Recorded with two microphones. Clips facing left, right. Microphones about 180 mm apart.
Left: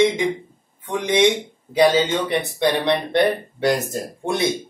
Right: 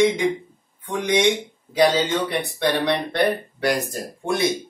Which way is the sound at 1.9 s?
25° left (ahead or behind).